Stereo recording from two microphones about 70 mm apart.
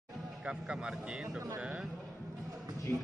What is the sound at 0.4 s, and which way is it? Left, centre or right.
Speech, centre.